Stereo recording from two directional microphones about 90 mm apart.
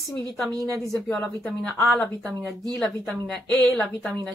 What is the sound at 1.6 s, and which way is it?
A woman's voice, 5° left (ahead or behind).